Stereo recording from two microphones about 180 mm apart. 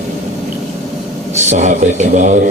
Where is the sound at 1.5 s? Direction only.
40° right (ahead or behind).